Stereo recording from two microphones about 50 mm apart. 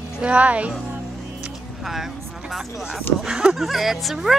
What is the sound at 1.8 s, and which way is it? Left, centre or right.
Speech, centre.